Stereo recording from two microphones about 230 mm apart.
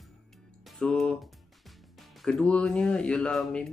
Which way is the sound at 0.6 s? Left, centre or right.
Centre.